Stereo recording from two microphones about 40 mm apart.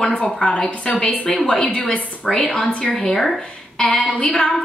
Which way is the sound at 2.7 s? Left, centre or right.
Left.